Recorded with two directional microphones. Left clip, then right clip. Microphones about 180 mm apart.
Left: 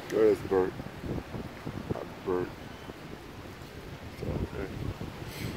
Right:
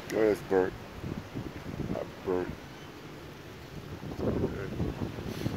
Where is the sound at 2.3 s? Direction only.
45° right (ahead or behind).